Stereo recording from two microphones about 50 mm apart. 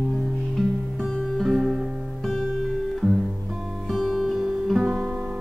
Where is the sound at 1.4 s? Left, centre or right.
Centre.